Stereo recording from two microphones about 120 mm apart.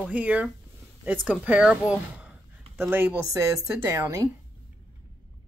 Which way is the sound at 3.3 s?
25° right (ahead or behind).